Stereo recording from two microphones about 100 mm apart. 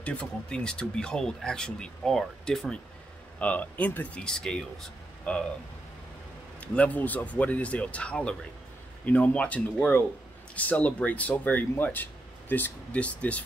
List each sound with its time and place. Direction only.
0.0 s speech: 15° left (ahead or behind)
6.6 s speech: 15° left (ahead or behind)